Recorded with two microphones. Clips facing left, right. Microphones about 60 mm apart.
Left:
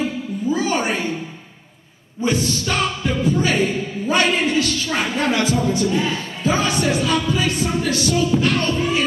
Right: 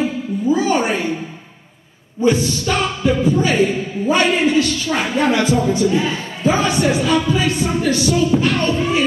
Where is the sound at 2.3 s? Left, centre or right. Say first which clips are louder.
Right 1 dB; centre.